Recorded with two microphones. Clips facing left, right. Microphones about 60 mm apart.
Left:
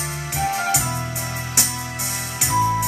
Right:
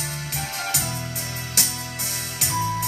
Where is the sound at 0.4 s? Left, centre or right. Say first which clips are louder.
Left 9 dB; centre.